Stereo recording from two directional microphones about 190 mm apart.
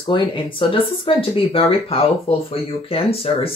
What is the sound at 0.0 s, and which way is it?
Speech, 25° left (ahead or behind).